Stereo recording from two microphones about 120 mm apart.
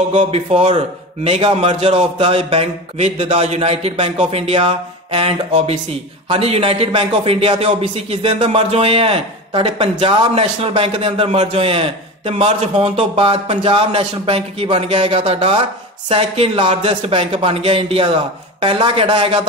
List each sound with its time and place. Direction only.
0.1 s a man's voice: 55° right (ahead or behind)